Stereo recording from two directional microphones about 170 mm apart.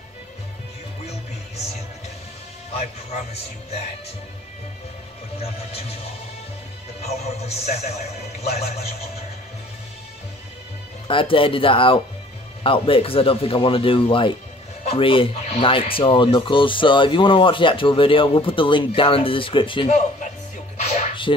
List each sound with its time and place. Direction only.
5.4 s speech: 35° left (ahead or behind)
7.0 s speech: 40° left (ahead or behind)
11.1 s speech: 30° left (ahead or behind)
21.3 s speech: 30° left (ahead or behind)